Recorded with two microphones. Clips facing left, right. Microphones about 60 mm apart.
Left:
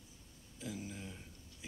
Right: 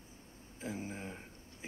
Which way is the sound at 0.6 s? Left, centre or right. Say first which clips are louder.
Right 3 dB; right.